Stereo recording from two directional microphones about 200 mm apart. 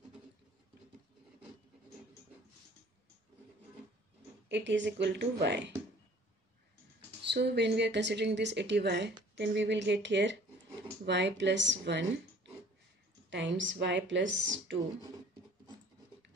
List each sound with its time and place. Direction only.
4.5 s a woman's voice: 65° right (ahead or behind)
7.2 s a woman's voice: 60° right (ahead or behind)
13.3 s a woman's voice: 65° right (ahead or behind)